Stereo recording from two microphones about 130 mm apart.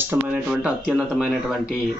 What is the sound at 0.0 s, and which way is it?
Speech, 15° right (ahead or behind).